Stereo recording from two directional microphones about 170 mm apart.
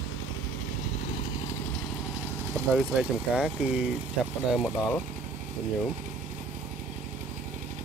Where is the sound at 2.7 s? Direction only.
5° right (ahead or behind).